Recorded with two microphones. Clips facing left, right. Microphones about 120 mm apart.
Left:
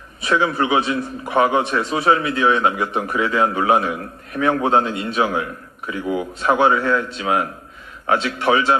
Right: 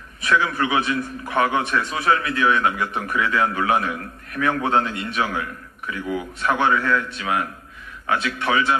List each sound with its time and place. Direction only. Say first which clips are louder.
0.2 s a man's voice: left 2 dB; 25° left (ahead or behind)